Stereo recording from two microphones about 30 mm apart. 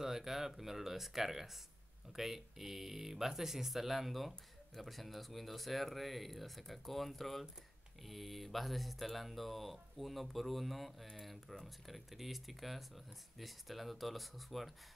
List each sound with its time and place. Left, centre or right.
0.0 s speech: centre